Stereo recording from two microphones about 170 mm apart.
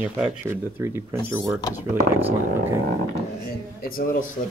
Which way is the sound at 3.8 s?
60° left (ahead or behind).